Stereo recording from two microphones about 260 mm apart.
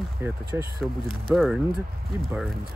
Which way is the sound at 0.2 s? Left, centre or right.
Centre.